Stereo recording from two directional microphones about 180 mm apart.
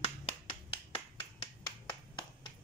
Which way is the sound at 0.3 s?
30° left (ahead or behind).